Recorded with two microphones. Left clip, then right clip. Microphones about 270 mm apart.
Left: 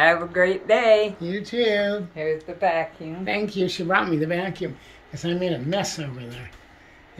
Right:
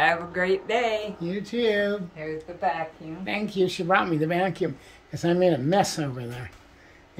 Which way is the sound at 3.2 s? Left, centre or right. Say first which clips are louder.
Left 1 dB; centre.